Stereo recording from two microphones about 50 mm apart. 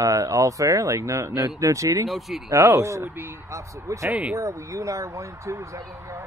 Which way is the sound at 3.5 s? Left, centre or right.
Right.